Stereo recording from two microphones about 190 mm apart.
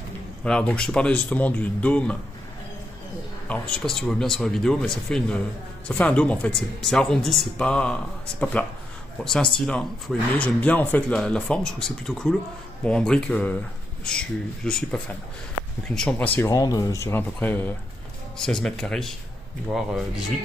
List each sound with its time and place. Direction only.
0.4 s speech: 5° left (ahead or behind)
3.4 s speech: 5° left (ahead or behind)
16.4 s speech: 20° left (ahead or behind); by 20.1 s centre (ahead or behind)